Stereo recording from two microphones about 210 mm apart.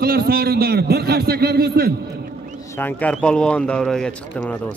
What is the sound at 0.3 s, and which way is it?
A man's voice, 50° right (ahead or behind).